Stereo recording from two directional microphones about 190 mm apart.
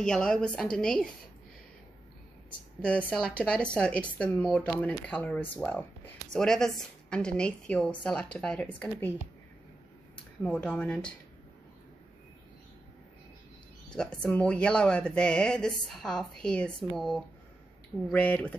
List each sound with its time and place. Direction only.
0.0 s speech: 5° left (ahead or behind)
2.8 s speech: 5° left (ahead or behind)
10.4 s speech: 5° left (ahead or behind)
13.9 s speech: 5° left (ahead or behind)